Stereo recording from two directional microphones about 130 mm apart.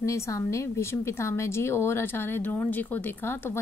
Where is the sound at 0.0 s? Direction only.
25° left (ahead or behind).